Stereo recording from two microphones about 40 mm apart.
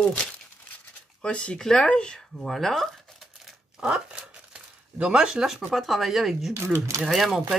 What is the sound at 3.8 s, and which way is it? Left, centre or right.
Speech, right.